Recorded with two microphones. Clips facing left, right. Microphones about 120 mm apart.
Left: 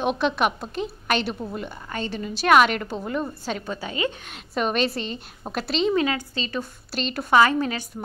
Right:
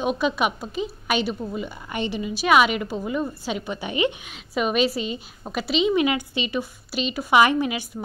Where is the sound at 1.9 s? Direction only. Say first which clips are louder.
Right 3 dB; 15° right (ahead or behind).